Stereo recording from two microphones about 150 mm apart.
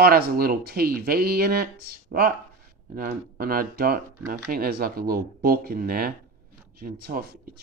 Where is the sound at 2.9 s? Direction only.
75° right (ahead or behind).